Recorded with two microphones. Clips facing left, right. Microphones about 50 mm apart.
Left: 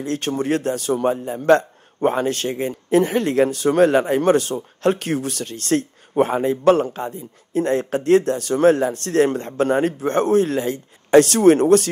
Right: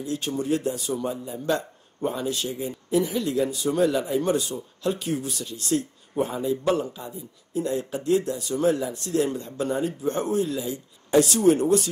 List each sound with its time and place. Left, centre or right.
0.0 s a man's voice: left